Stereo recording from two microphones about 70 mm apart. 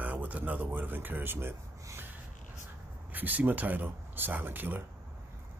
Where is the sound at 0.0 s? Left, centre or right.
Right.